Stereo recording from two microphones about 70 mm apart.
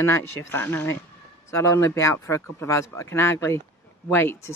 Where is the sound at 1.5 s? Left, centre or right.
Left.